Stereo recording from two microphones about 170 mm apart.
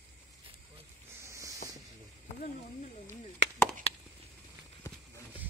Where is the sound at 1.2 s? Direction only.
15° right (ahead or behind).